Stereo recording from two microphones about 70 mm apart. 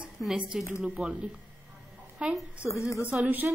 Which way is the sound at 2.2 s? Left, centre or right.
Centre.